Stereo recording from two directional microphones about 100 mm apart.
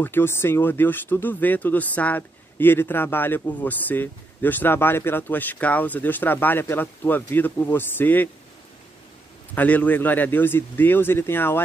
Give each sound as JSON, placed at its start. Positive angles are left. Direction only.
{"t": 0.0, "sound": "speech", "side_deg": 20}
{"t": 9.6, "sound": "speech", "side_deg": 15}